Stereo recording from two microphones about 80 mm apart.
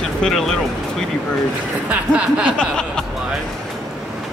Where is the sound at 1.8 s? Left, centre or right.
Centre.